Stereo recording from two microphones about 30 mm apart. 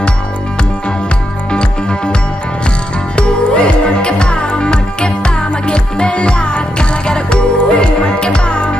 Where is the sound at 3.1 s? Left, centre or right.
Left.